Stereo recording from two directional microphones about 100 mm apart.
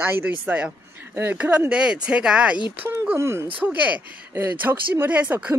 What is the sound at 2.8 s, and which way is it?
A woman's voice, 25° right (ahead or behind).